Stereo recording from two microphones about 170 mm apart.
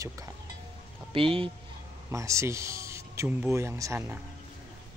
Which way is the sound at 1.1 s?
30° right (ahead or behind).